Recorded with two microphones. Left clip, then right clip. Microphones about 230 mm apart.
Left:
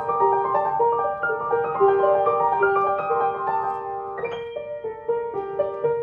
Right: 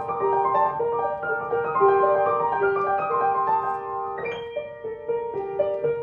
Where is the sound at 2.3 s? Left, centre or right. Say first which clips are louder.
Left 3 dB; centre.